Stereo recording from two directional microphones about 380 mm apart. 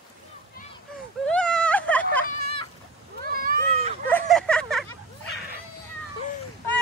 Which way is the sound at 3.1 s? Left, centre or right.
Right.